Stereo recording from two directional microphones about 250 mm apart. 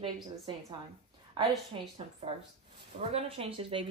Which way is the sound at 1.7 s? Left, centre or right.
Right.